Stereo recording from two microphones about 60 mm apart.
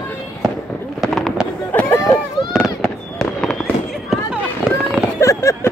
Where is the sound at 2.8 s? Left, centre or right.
Centre.